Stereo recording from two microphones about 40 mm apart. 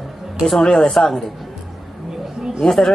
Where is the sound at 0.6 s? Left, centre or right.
Centre.